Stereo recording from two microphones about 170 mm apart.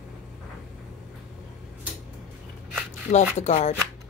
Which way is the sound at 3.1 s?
45° left (ahead or behind).